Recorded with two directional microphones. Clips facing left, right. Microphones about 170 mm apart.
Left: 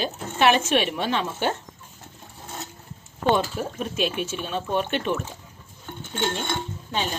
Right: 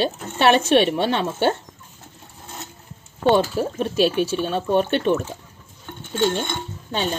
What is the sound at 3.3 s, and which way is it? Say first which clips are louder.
Speech: right 5 dB; 30° right (ahead or behind).